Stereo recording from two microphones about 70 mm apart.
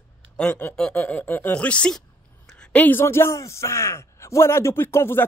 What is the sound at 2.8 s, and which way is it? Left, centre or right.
A man's voice, left.